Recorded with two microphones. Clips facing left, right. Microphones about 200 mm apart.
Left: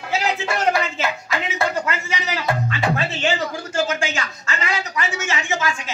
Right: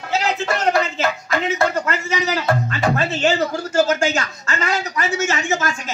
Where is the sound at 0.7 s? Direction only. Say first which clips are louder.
Right 3 dB; 45° right (ahead or behind).